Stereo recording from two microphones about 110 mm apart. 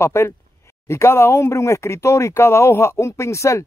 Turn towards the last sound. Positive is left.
turn(degrees=25)  # may be behind; listen again after turning